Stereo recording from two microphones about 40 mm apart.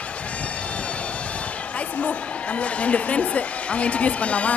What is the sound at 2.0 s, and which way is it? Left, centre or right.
A woman's voice, left.